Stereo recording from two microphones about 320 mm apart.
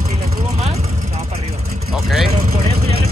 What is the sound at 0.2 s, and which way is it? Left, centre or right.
Vehicle, centre.